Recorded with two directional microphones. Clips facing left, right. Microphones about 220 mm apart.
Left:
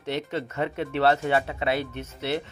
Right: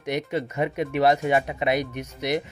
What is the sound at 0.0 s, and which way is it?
Speech, 15° right (ahead or behind).